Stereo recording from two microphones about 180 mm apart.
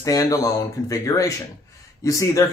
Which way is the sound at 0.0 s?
20° left (ahead or behind).